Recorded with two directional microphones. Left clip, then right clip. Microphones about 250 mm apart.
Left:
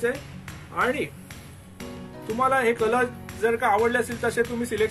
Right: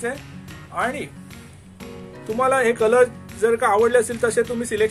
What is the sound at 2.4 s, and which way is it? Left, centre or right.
Speech, right.